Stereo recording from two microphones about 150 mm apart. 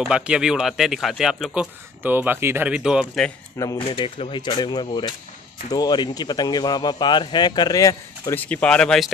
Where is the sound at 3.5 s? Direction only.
25° left (ahead or behind).